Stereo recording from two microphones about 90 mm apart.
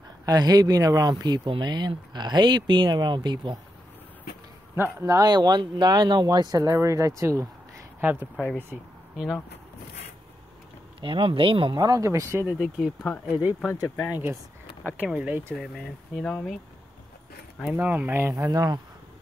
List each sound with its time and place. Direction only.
0.2 s speech: 45° right (ahead or behind)
4.7 s speech: 25° right (ahead or behind)
5.1 s speech: 50° right (ahead or behind)
8.0 s speech: 20° right (ahead or behind)
9.1 s speech: 5° right (ahead or behind)
11.0 s speech: 75° right (ahead or behind)
11.7 s speech: 45° right (ahead or behind)
12.5 s speech: 5° right (ahead or behind)
13.7 s speech: 35° left (ahead or behind)
14.1 s speech: 25° right (ahead or behind)
15.5 s speech: 5° right (ahead or behind)
15.8 s speech: 10° left (ahead or behind)
17.6 s speech: 15° right (ahead or behind); by 18.8 s 40° right (ahead or behind)